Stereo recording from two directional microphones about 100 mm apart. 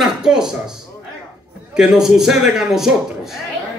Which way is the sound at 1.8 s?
5° right (ahead or behind).